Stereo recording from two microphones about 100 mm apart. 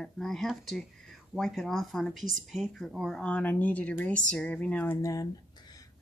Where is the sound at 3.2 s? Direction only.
10° left (ahead or behind).